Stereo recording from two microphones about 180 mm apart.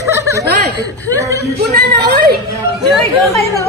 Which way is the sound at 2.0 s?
60° right (ahead or behind).